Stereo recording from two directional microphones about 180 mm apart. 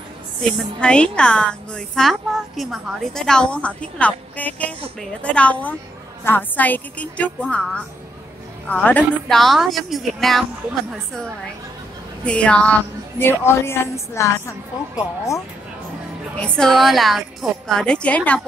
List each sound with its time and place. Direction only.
0.5 s a woman's voice: 5° left (ahead or behind)
12.2 s a woman's voice: 5° left (ahead or behind)
16.3 s a woman's voice: 5° left (ahead or behind)